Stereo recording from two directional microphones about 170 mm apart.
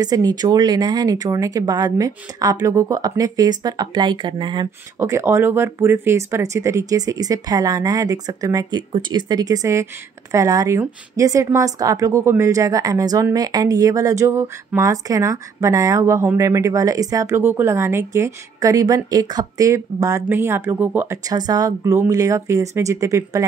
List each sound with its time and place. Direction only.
0.0 s speech: 25° right (ahead or behind)
4.9 s speech: 15° right (ahead or behind)